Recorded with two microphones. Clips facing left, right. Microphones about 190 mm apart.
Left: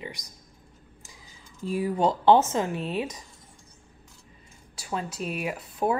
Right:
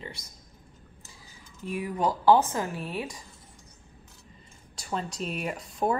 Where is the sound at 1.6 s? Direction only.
30° left (ahead or behind).